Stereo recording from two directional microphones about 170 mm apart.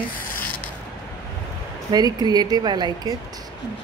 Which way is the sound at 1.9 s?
25° right (ahead or behind).